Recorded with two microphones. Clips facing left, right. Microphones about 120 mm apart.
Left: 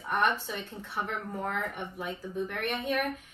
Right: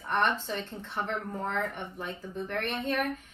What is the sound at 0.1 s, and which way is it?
A woman's voice, 5° left (ahead or behind).